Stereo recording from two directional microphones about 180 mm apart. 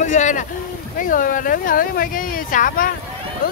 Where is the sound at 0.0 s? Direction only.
40° left (ahead or behind).